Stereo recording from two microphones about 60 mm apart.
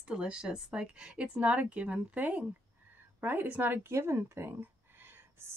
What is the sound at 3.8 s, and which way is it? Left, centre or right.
Speech, right.